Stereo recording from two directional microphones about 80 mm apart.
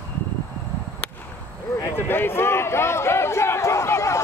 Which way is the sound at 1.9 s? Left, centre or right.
Left.